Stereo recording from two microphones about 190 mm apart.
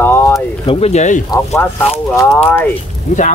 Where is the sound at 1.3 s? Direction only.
15° left (ahead or behind).